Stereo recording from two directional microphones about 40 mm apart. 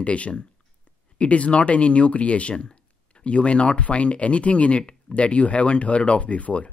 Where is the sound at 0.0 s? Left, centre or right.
Left.